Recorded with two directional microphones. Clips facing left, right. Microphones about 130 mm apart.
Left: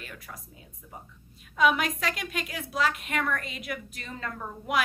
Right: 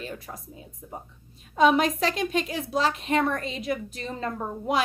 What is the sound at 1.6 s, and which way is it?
A woman's voice, 30° right (ahead or behind).